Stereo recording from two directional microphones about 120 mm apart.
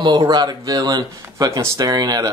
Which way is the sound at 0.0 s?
35° right (ahead or behind).